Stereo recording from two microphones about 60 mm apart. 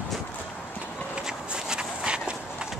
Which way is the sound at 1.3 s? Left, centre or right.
Centre.